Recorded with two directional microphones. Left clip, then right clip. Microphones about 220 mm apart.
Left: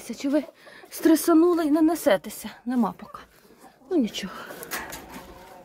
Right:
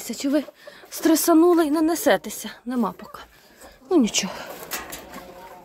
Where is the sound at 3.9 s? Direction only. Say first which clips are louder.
Right 6 dB; 20° right (ahead or behind).